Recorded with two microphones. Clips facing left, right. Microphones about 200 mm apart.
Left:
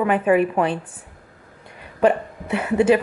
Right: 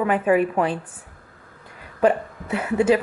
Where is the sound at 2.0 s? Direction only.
25° left (ahead or behind).